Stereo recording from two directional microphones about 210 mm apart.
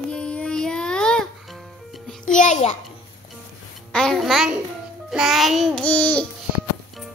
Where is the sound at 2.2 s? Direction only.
35° left (ahead or behind).